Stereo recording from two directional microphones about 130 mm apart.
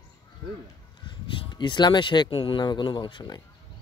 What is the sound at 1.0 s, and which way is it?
Speech, 40° left (ahead or behind).